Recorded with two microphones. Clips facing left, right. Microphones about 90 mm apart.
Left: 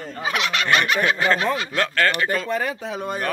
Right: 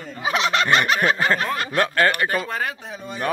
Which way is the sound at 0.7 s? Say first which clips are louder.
Left 2 dB; 35° right (ahead or behind).